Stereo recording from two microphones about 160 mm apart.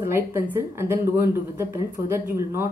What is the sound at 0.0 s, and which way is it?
Speech, 15° right (ahead or behind).